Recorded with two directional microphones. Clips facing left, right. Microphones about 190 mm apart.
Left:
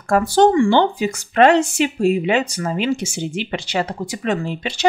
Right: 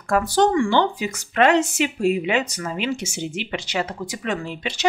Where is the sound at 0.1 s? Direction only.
30° left (ahead or behind).